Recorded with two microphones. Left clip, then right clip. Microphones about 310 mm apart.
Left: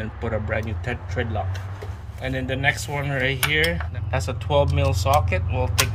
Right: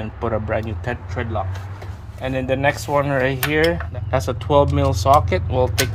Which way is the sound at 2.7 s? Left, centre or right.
Right.